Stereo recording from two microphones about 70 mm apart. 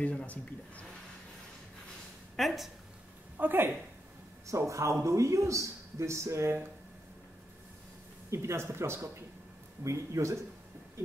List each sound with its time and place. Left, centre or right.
0.0 s a man's voice: centre
2.3 s speech: centre
3.3 s speech: right
4.5 s a man's voice: right
8.3 s a man's voice: right